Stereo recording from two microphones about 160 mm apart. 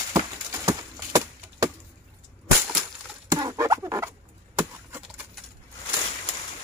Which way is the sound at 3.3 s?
20° right (ahead or behind).